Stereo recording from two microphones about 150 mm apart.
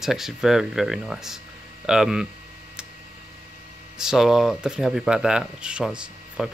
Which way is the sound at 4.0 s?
5° right (ahead or behind).